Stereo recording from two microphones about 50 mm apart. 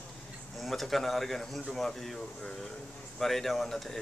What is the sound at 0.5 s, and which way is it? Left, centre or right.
A man's voice, centre.